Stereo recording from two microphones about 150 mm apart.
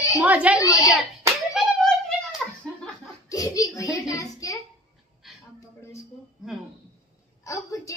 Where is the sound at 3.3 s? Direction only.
20° left (ahead or behind).